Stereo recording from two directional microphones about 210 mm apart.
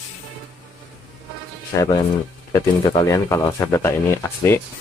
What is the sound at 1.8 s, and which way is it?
Speech, 20° left (ahead or behind).